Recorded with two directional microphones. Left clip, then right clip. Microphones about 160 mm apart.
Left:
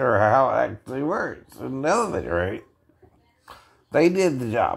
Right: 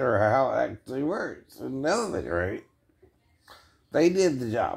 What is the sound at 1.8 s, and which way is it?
Speech, 15° left (ahead or behind).